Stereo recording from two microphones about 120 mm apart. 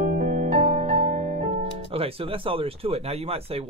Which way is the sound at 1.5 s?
50° right (ahead or behind).